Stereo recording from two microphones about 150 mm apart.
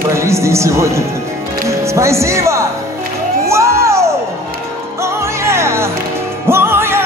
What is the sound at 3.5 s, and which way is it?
Music, 20° right (ahead or behind).